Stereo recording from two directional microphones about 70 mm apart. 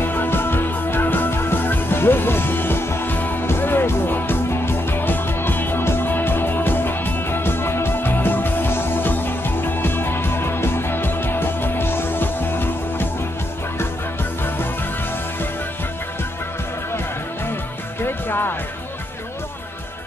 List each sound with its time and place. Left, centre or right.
0.0 s music: left
18.0 s music: left